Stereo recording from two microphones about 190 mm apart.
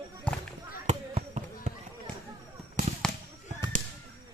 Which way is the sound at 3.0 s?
5° left (ahead or behind).